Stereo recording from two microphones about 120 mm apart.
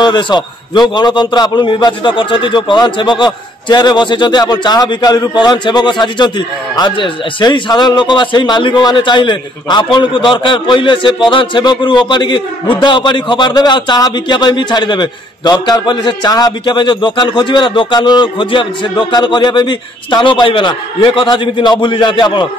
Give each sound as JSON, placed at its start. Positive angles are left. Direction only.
{"t": 0.0, "sound": "a man's voice", "side_deg": 40}